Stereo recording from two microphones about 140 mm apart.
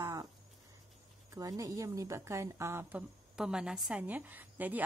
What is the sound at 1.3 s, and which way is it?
A woman's voice, 25° right (ahead or behind).